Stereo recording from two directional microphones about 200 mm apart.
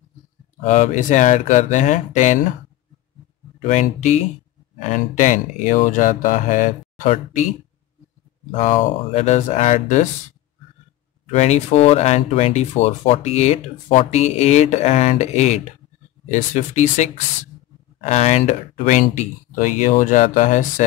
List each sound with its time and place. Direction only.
0.7 s speech: 40° left (ahead or behind)
3.6 s speech: 35° left (ahead or behind)
8.5 s speech: 35° left (ahead or behind)
11.2 s speech: 35° left (ahead or behind)